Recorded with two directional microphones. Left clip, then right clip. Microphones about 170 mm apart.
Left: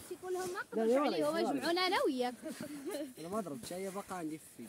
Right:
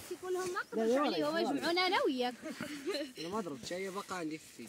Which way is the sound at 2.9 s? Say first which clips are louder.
Right 4 dB; 90° left.